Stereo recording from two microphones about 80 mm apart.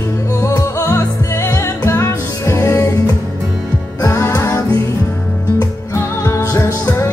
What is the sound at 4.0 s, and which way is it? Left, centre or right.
Music, left.